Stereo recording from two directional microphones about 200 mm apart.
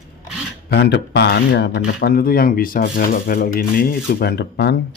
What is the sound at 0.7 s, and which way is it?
Speech, 60° left (ahead or behind).